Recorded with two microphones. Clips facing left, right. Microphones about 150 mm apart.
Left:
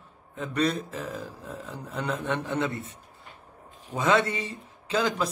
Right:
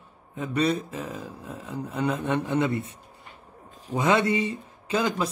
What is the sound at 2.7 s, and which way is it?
Speech, 65° right (ahead or behind).